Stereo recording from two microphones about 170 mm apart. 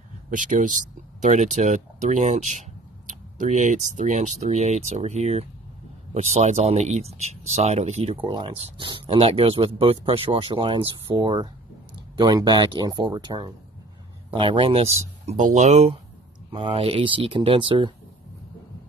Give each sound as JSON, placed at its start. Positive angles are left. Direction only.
{"t": 0.3, "sound": "speech", "side_deg": -50}